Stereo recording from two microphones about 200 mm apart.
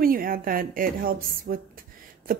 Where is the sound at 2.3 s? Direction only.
45° right (ahead or behind).